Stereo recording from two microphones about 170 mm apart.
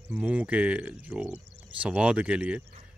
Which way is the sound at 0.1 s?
10° right (ahead or behind).